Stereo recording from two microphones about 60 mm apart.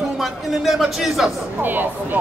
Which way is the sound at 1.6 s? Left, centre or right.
Right.